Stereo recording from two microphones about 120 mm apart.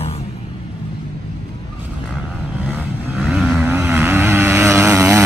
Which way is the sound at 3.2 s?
5° right (ahead or behind).